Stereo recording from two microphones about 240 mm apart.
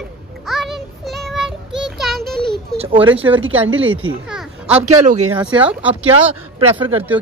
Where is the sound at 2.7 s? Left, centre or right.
Right.